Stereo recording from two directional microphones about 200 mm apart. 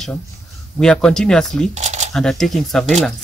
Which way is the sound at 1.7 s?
35° right (ahead or behind).